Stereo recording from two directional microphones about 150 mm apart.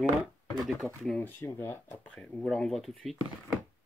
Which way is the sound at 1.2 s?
15° left (ahead or behind).